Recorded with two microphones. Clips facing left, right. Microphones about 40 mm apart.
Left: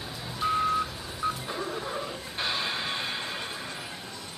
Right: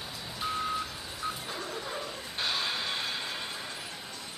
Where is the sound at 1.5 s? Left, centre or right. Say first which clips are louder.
Left 4 dB; centre.